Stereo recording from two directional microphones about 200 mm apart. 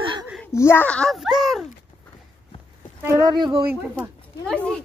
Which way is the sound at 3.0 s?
15° right (ahead or behind).